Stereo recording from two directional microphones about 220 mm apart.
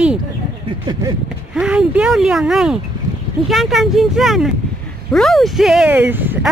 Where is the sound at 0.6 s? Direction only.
20° right (ahead or behind).